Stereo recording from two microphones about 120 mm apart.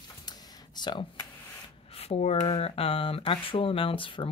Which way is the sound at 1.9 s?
60° left (ahead or behind).